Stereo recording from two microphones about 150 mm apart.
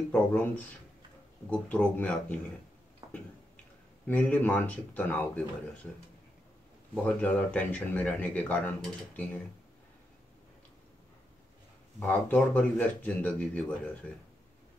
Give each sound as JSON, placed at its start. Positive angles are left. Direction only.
{"t": 0.1, "sound": "speech", "side_deg": 10}
{"t": 3.0, "sound": "a sound", "side_deg": -20}
{"t": 4.1, "sound": "speech", "side_deg": 10}
{"t": 7.0, "sound": "speech", "side_deg": 10}
{"t": 12.0, "sound": "speech", "side_deg": 5}